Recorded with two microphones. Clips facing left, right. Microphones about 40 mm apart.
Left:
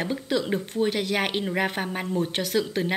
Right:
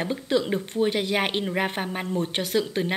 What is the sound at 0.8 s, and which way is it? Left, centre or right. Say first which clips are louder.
A woman's voice: right 2 dB; centre.